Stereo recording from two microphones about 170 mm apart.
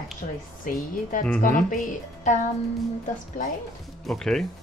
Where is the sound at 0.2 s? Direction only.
55° left (ahead or behind).